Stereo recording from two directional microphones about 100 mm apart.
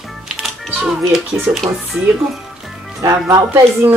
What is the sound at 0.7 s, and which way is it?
A child's voice, 5° right (ahead or behind).